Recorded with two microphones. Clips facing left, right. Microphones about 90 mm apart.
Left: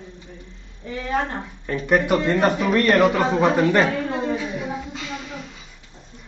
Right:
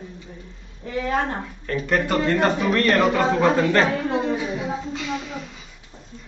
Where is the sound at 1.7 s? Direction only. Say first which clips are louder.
Left 3 dB; 15° left (ahead or behind).